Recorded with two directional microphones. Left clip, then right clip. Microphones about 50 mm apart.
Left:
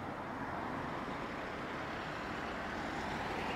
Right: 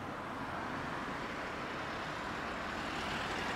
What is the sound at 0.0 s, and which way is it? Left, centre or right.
Vehicle, right.